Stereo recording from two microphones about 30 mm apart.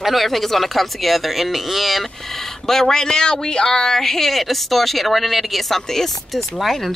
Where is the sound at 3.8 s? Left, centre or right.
Centre.